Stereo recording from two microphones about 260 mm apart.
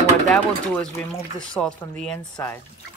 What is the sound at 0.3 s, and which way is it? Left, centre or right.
Speech, centre.